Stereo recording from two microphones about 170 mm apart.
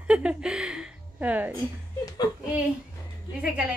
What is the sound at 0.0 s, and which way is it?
Speech, 5° right (ahead or behind).